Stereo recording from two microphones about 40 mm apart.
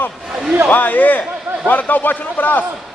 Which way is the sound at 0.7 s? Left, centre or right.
Left.